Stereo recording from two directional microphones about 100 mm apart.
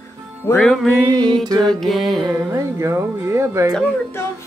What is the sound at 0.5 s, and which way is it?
Music, 30° left (ahead or behind).